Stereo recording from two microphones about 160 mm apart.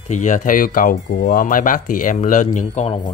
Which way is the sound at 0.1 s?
50° left (ahead or behind).